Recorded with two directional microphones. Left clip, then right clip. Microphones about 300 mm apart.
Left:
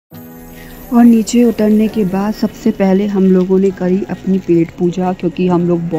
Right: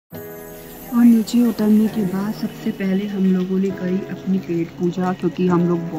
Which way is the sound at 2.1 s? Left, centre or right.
Centre.